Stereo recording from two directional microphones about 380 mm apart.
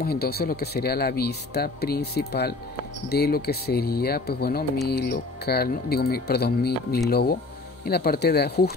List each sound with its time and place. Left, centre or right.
0.0 s speech: left